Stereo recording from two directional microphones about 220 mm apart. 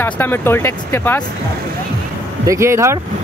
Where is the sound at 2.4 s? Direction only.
15° right (ahead or behind).